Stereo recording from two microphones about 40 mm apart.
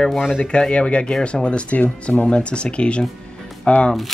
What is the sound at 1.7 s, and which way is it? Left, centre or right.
Speech, left.